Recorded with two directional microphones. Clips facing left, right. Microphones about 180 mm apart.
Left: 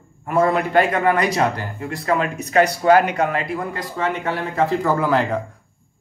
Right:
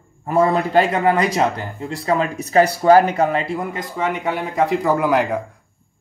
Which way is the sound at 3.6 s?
15° right (ahead or behind).